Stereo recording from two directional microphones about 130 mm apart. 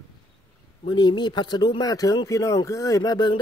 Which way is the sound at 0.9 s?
35° left (ahead or behind).